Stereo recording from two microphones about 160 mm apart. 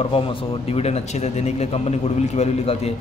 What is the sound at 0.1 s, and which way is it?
A man's voice, 35° left (ahead or behind).